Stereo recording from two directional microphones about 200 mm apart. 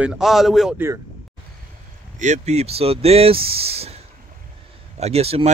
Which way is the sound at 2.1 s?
35° right (ahead or behind).